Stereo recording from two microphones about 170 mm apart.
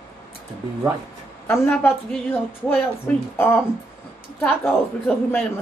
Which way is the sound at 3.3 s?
10° left (ahead or behind).